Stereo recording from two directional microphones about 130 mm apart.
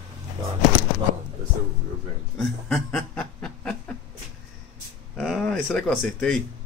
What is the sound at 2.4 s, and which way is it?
Chuckle, 5° left (ahead or behind).